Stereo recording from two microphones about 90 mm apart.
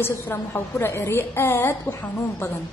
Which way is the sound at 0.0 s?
25° left (ahead or behind).